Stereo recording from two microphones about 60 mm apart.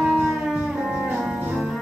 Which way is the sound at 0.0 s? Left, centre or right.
Centre.